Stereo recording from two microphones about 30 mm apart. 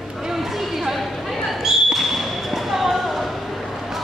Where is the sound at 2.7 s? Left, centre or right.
Centre.